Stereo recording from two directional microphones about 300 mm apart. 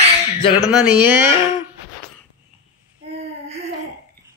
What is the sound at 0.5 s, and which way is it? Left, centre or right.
Speech, centre.